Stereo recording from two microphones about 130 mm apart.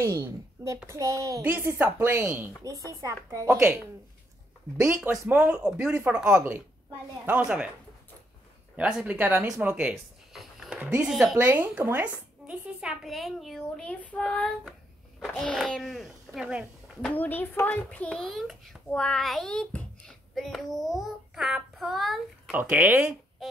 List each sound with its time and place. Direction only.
0.0 s a woman's voice: 20° right (ahead or behind)
5.1 s speech: 15° right (ahead or behind)
8.7 s a child's voice: 10° right (ahead or behind)
17.0 s a child's voice: 15° left (ahead or behind)
22.5 s speech: 10° right (ahead or behind)
23.4 s music: centre (ahead or behind)